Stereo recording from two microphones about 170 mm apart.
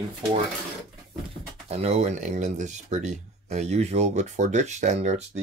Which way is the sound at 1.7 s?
40° right (ahead or behind).